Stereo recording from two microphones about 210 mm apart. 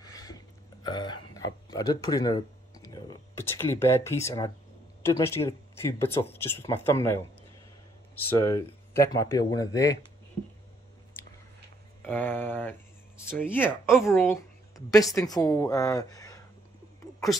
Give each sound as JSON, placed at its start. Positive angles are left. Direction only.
{"t": 0.0, "sound": "burping", "side_deg": 15}
{"t": 0.8, "sound": "speech", "side_deg": 20}
{"t": 8.3, "sound": "speech", "side_deg": 15}
{"t": 12.0, "sound": "speech", "side_deg": 10}